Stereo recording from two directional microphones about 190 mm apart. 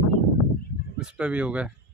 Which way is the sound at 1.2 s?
5° right (ahead or behind).